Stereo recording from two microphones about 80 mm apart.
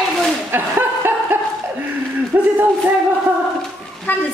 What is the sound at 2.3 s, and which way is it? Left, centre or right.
Speech, right.